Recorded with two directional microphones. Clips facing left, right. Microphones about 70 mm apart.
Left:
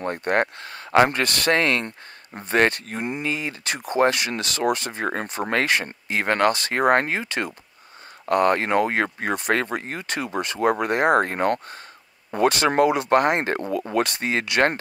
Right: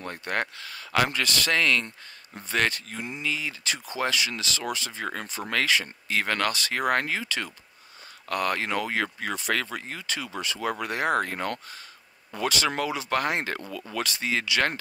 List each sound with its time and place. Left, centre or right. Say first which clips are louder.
0.0 s speech: left 8 dB; left